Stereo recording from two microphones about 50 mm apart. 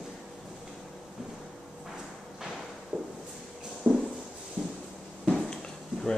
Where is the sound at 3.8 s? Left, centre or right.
Centre.